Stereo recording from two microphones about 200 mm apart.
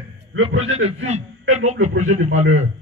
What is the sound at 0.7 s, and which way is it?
Speech, 30° right (ahead or behind).